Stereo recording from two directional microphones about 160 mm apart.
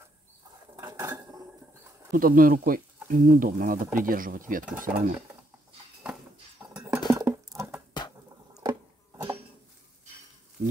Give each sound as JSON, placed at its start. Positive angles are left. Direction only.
{"t": 0.7, "sound": "dishes", "side_deg": -20}
{"t": 2.1, "sound": "speech", "side_deg": -60}
{"t": 6.7, "sound": "dishes", "side_deg": -10}
{"t": 7.1, "sound": "patter", "side_deg": -20}
{"t": 8.6, "sound": "music", "side_deg": -20}